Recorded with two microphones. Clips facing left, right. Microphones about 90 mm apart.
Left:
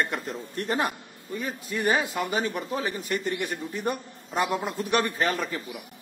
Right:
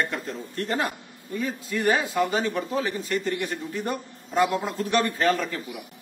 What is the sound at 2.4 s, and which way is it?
A man's voice, 20° left (ahead or behind).